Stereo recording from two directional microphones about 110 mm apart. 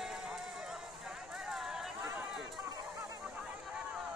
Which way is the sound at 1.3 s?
5° right (ahead or behind).